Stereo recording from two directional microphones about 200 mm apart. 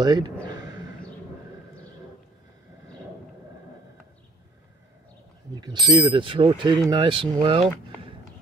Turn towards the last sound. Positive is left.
turn(degrees=-25)  # may be behind; listen again after turning